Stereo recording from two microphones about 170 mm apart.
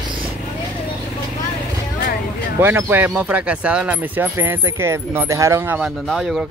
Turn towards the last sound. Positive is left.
turn(degrees=0)  # may be behind; listen again after turning